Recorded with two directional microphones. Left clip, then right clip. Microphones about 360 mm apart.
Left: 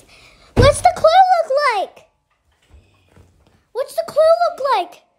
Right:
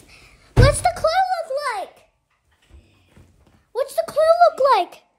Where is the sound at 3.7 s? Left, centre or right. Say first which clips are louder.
Left 2 dB; centre.